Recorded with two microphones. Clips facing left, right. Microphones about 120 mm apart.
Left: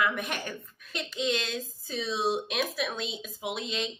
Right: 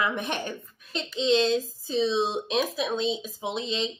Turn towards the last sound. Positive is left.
turn(degrees=-25)  # may be behind; listen again after turning